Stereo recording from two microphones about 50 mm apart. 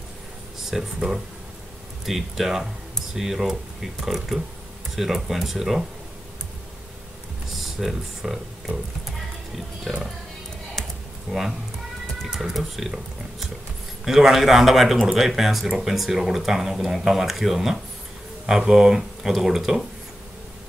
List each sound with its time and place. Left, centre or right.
0.7 s speech: centre
7.5 s speech: centre
10.8 s computer keyboard: centre
11.3 s speech: centre